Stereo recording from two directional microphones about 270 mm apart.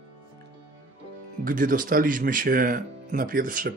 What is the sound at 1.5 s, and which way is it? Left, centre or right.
Speech, right.